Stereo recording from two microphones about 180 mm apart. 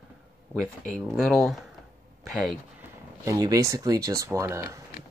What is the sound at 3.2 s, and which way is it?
Speech, 20° right (ahead or behind).